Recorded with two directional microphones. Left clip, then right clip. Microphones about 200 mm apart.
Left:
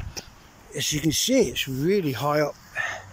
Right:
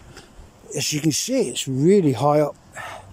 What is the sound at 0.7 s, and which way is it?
Speech, 10° right (ahead or behind).